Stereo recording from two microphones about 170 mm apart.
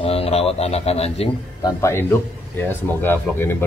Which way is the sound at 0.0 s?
35° left (ahead or behind).